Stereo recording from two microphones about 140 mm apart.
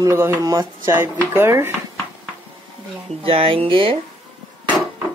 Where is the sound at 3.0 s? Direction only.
40° right (ahead or behind).